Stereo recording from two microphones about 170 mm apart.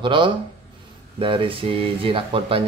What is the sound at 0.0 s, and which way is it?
Speech, 30° right (ahead or behind).